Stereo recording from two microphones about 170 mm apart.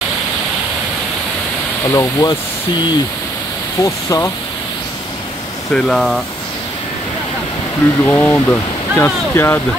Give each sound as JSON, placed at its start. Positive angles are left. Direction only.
{"t": 1.9, "sound": "speech", "side_deg": 20}
{"t": 3.8, "sound": "speech", "side_deg": 20}
{"t": 5.8, "sound": "speech", "side_deg": 0}
{"t": 8.0, "sound": "speech", "side_deg": 10}